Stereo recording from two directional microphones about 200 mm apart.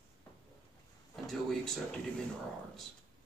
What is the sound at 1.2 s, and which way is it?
Speech, centre (ahead or behind).